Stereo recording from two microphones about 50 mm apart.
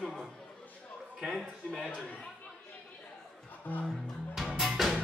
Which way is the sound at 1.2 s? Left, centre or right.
Centre.